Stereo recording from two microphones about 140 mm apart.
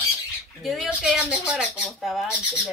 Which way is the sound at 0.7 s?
Centre (ahead or behind).